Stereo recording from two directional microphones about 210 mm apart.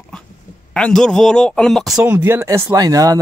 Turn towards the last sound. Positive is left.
turn(degrees=-15)  # may be behind; listen again after turning